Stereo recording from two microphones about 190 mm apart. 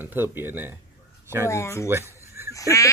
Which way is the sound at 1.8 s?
15° right (ahead or behind).